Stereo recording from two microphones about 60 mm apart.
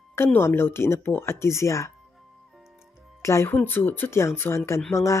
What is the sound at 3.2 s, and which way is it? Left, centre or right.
Speech, left.